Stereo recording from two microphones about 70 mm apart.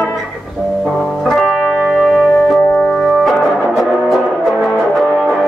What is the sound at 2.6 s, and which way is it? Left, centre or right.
Music, centre.